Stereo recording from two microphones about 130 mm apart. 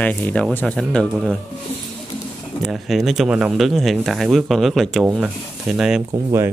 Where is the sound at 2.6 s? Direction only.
Centre (ahead or behind).